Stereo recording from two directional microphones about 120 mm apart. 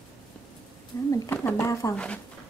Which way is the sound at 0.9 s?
25° left (ahead or behind).